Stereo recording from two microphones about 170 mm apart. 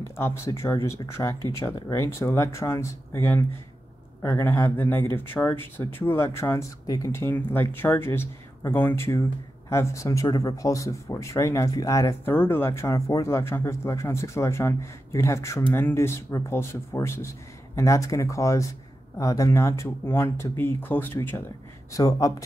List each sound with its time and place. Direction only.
0.0 s speech: 15° left (ahead or behind)